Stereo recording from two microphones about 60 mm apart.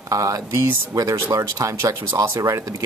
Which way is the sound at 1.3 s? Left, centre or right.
Right.